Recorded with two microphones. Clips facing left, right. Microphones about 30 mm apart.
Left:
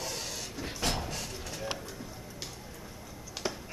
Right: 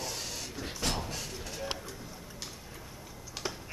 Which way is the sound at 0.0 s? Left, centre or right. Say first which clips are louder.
Left 1 dB; centre.